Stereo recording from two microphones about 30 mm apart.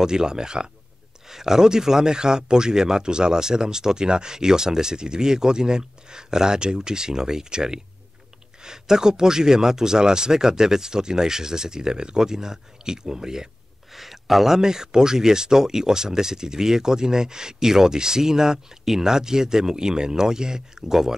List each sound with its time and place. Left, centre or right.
0.0 s speech: right
1.2 s speech: centre
13.9 s speech: centre